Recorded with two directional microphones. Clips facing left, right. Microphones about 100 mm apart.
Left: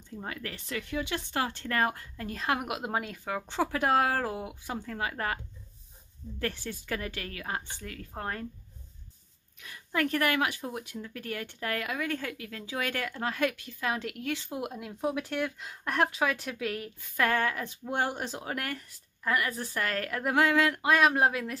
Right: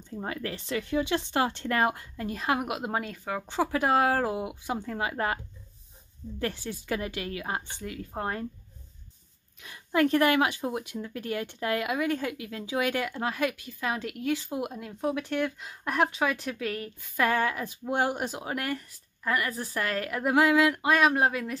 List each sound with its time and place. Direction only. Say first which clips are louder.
0.2 s speech: right 5 dB; 30° right (ahead or behind)
6.4 s speech: right 2 dB; 15° right (ahead or behind)
9.6 s speech: right 6 dB; 25° right (ahead or behind); by 21.5 s centre (ahead or behind)